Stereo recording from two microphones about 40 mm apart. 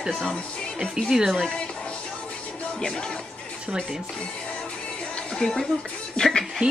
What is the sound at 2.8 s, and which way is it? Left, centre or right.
Speech, centre.